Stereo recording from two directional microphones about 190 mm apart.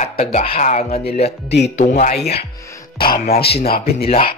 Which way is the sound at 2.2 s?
60° left (ahead or behind).